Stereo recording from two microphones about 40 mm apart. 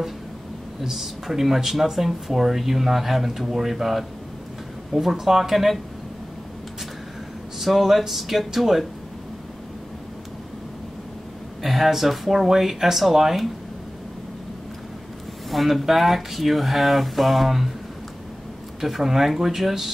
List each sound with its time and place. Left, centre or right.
0.8 s speech: centre
5.1 s speech: centre
7.6 s speech: centre
11.6 s speech: centre
15.5 s speech: centre
18.8 s speech: centre